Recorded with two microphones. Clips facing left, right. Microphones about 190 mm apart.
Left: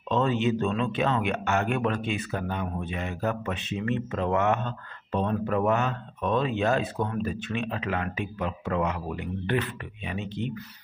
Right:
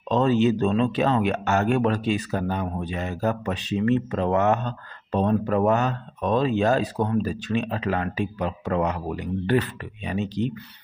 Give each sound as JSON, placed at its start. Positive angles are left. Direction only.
{"t": 0.1, "sound": "speech", "side_deg": -35}